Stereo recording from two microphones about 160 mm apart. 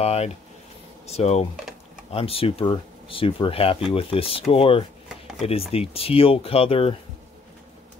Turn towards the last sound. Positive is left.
turn(degrees=35)  # may be behind; listen again after turning